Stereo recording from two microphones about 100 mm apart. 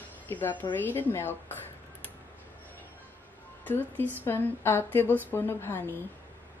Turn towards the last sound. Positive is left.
turn(degrees=20)  # may be behind; listen again after turning